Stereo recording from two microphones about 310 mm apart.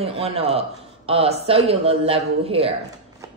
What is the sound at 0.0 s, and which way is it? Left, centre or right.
A woman's voice, centre.